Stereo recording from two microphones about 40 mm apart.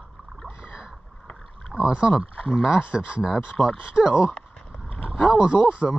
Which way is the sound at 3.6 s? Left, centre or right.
Left.